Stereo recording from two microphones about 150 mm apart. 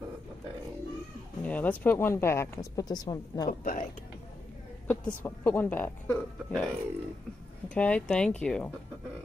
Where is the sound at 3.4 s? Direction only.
70° left (ahead or behind).